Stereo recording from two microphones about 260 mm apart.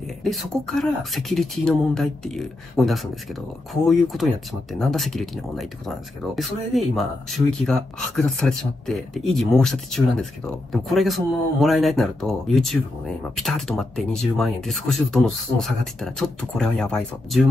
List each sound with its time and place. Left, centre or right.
0.2 s speech: centre